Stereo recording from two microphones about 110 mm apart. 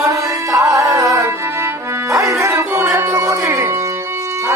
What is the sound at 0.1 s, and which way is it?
Music, 30° right (ahead or behind).